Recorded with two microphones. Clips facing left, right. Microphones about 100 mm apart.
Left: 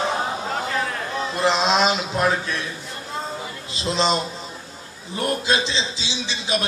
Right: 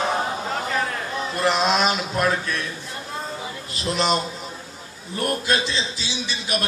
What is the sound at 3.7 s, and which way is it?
A man's voice, 25° left (ahead or behind).